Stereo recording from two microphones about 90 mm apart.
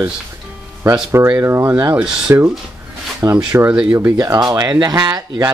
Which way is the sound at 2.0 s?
10° right (ahead or behind).